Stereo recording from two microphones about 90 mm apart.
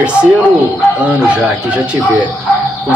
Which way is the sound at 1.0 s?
15° right (ahead or behind).